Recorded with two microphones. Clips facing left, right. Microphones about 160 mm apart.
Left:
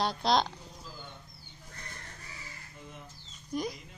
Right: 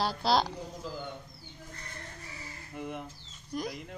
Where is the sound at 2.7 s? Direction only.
65° right (ahead or behind).